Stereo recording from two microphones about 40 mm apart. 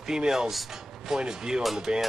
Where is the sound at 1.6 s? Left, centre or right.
Centre.